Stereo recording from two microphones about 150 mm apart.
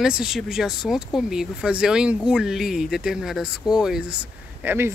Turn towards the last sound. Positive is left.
turn(degrees=-15)  # may be behind; listen again after turning